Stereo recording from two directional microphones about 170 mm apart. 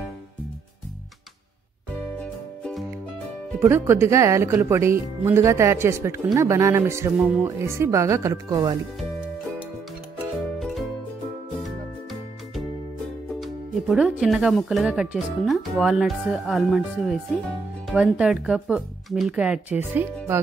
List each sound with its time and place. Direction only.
3.5 s speech: 15° right (ahead or behind)
10.6 s music: centre (ahead or behind)
13.4 s speech: centre (ahead or behind)